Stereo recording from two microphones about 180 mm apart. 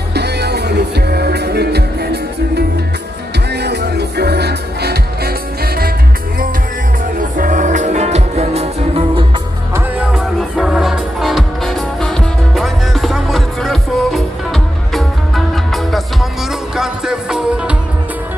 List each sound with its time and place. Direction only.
0.1 s music: 65° right (ahead or behind)
3.6 s music: 65° right (ahead or behind)
7.2 s music: 50° right (ahead or behind)
9.8 s music: 5° right (ahead or behind)